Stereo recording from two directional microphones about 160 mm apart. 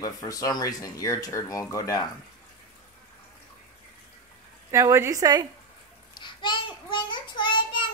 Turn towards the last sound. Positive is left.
turn(degrees=30)  # may be behind; listen again after turning